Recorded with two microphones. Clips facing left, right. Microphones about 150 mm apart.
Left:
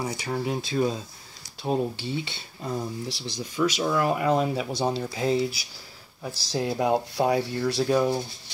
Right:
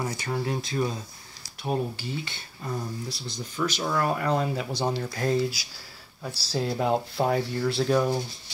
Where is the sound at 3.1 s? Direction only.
75° left (ahead or behind).